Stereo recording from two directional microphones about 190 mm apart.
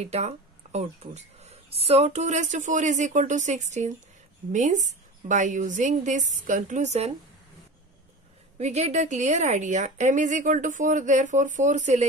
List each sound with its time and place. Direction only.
0.0 s speech: 35° right (ahead or behind)
8.5 s speech: 35° right (ahead or behind)